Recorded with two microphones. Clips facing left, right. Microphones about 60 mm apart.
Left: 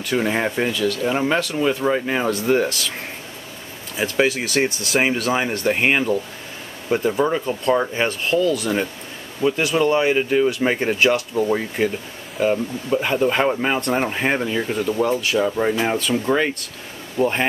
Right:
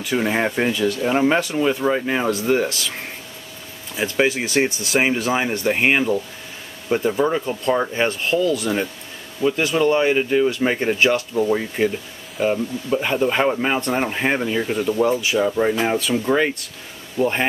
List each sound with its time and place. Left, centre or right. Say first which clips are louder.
0.0 s speech: even; centre
0.7 s speech: right 1 dB; right
1.0 s speech: right 4 dB; centre
1.6 s speech: even; centre
3.9 s speech: even; centre
4.8 s speech: even; centre
9.4 s speech: even; centre
9.9 s speech: even; centre